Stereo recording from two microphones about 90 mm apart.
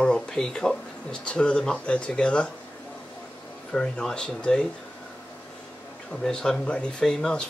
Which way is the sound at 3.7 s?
10° left (ahead or behind).